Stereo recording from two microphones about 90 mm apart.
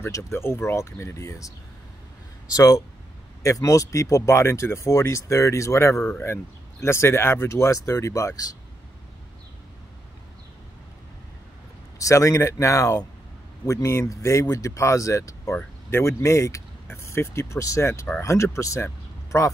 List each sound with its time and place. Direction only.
0.0 s speech: 30° left (ahead or behind)
2.5 s speech: 40° left (ahead or behind)
12.0 s speech: 35° left (ahead or behind)